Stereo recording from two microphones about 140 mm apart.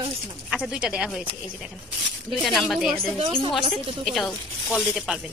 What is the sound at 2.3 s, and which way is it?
Speech, centre (ahead or behind).